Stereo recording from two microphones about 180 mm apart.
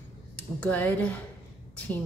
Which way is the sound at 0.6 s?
10° left (ahead or behind).